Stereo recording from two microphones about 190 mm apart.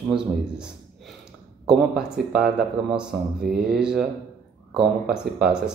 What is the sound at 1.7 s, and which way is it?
Speech, centre (ahead or behind).